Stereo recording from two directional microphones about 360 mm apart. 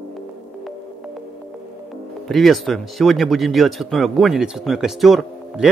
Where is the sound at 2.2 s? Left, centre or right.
Centre.